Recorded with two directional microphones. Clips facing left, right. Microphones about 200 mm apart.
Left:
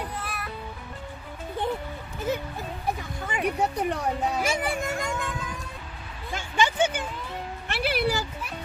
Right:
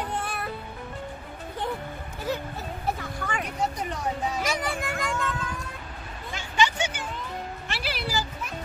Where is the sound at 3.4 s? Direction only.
60° left (ahead or behind).